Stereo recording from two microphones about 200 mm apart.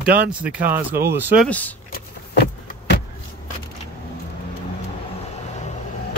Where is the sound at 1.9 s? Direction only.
55° left (ahead or behind).